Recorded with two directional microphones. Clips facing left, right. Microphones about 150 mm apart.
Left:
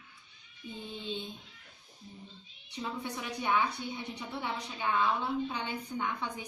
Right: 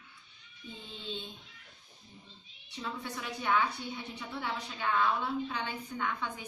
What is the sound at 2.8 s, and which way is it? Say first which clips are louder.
A woman's voice: left 2 dB; 15° left (ahead or behind).